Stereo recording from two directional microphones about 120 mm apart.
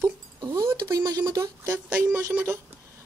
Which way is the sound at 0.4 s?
35° right (ahead or behind).